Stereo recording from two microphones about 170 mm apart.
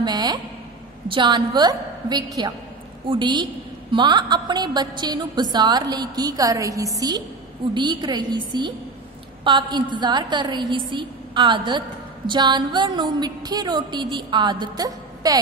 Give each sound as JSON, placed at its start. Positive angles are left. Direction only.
{"t": 0.0, "sound": "a woman's voice", "side_deg": -25}